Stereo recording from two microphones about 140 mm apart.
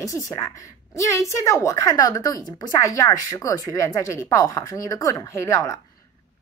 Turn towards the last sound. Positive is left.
turn(degrees=25)  # may be behind; listen again after turning